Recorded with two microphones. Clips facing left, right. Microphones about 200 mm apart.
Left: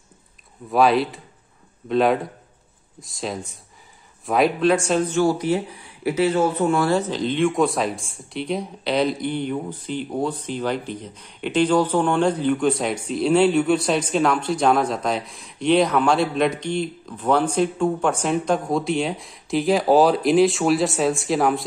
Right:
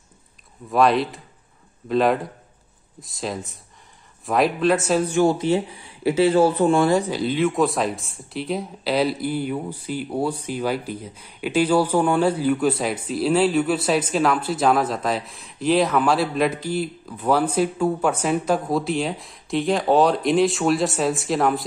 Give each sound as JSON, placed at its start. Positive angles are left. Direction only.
{"t": 0.7, "sound": "speech", "side_deg": 0}
{"t": 5.2, "sound": "speech", "side_deg": -25}
{"t": 6.9, "sound": "speech", "side_deg": -10}